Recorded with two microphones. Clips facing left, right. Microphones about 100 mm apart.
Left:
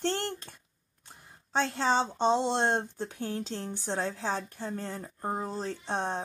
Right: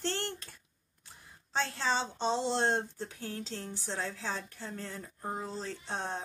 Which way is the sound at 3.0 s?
20° left (ahead or behind).